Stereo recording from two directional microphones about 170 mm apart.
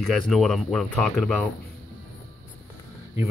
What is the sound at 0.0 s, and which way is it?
Speech, centre (ahead or behind).